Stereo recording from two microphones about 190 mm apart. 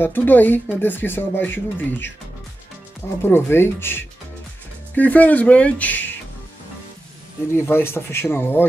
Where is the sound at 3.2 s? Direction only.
10° left (ahead or behind).